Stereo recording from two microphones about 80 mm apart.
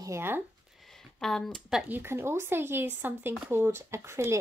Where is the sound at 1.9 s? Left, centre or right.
Right.